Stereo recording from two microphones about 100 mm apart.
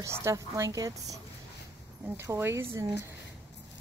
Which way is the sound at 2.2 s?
30° right (ahead or behind).